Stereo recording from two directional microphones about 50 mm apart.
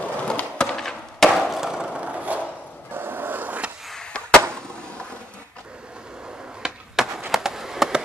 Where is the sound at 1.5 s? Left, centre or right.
Centre.